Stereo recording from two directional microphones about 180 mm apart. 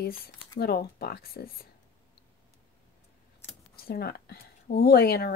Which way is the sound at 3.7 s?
60° left (ahead or behind).